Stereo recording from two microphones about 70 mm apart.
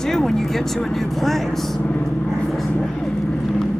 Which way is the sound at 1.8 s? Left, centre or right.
Centre.